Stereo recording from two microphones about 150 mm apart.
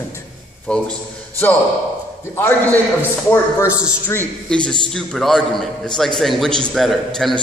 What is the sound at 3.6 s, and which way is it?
A man's voice, 5° right (ahead or behind).